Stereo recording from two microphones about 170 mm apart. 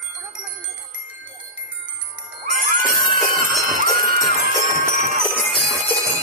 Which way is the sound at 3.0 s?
55° right (ahead or behind).